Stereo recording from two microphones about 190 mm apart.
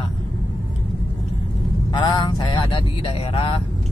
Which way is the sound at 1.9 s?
25° left (ahead or behind).